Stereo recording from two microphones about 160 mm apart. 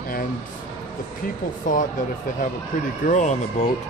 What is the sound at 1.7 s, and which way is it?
Speech, 55° left (ahead or behind).